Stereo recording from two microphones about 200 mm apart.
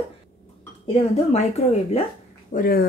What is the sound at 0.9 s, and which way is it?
Speech, 30° left (ahead or behind).